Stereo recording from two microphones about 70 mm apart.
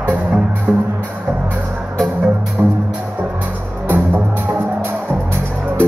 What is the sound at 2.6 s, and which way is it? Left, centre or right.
Music, right.